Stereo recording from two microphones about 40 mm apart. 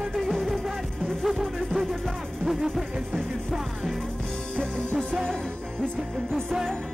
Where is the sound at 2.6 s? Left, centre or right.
Centre.